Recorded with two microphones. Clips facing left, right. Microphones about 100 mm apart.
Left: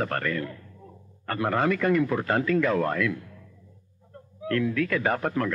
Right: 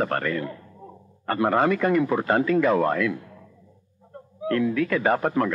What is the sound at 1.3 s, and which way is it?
Speech, 5° right (ahead or behind).